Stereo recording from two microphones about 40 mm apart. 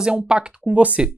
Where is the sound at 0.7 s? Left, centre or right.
Right.